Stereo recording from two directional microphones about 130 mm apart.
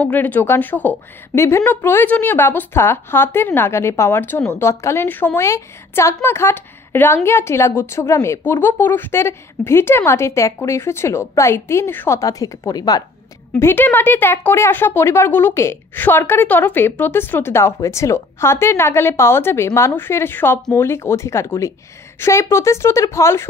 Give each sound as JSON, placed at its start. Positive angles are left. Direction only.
{"t": 0.0, "sound": "a woman's voice", "side_deg": 15}
{"t": 13.6, "sound": "speech", "side_deg": 15}